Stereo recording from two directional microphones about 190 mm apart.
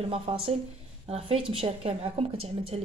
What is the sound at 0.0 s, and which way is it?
A woman's voice, 30° right (ahead or behind).